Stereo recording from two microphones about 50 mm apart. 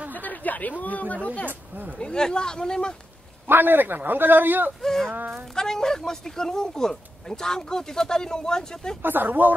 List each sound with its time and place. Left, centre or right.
0.1 s speech: left
1.5 s speech: right
2.0 s speech: centre
3.4 s speech: right
4.8 s speech: centre
5.1 s speech: right
5.5 s speech: centre
9.0 s speech: right